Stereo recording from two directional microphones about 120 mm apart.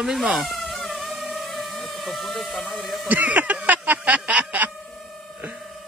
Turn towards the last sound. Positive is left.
turn(degrees=-15)  # may be behind; listen again after turning